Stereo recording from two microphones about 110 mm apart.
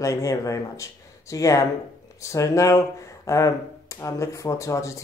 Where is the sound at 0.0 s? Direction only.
30° left (ahead or behind).